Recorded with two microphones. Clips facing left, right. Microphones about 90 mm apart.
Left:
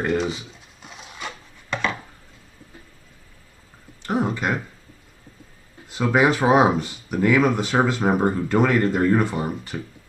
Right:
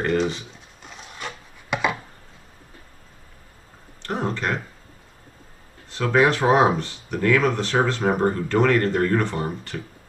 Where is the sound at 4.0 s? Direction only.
10° left (ahead or behind).